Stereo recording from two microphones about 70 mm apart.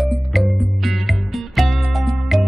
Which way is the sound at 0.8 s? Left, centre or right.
Centre.